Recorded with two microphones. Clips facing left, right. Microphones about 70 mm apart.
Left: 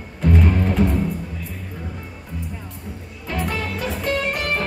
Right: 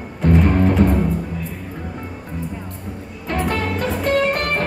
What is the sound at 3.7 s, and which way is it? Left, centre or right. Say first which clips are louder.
Music: right 5 dB; centre.